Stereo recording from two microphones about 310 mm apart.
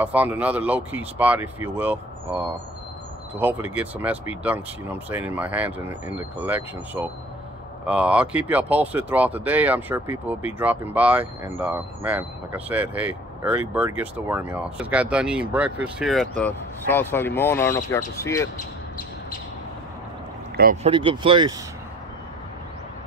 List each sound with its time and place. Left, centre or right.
0.0 s speech: centre
20.5 s speech: right
20.9 s speech: centre